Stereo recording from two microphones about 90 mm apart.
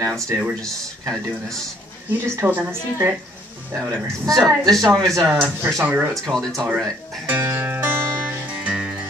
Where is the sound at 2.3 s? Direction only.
20° right (ahead or behind).